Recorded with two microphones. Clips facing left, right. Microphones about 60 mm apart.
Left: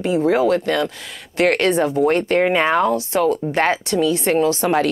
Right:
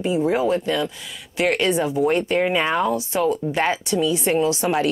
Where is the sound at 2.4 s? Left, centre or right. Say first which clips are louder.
Left 4 dB; left.